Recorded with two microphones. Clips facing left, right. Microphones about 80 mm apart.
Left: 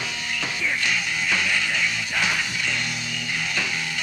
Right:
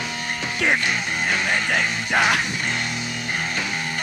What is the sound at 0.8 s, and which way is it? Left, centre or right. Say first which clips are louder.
Music: right 2 dB; right.